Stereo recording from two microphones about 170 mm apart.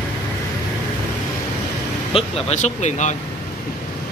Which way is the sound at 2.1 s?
40° left (ahead or behind).